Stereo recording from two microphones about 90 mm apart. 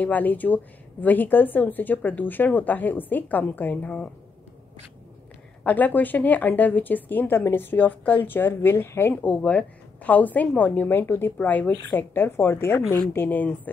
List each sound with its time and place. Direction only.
0.0 s speech: 20° left (ahead or behind)
5.6 s speech: 20° left (ahead or behind)
9.2 s a woman's voice: 15° left (ahead or behind)